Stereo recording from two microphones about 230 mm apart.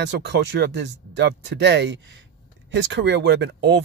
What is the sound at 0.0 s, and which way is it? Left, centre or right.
Speech, right.